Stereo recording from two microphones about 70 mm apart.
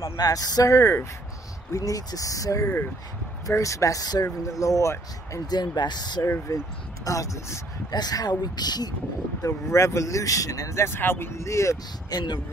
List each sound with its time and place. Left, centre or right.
0.2 s speech: left
0.7 s speech: left
1.7 s speech: left
5.5 s speech: left
6.2 s speech: left
7.9 s speech: left
9.4 s speech: left
12.1 s speech: left